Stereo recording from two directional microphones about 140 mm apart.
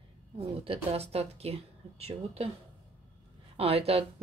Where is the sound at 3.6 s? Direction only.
45° right (ahead or behind).